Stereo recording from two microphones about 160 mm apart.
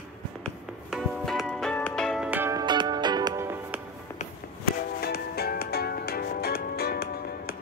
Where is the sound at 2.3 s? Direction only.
15° right (ahead or behind).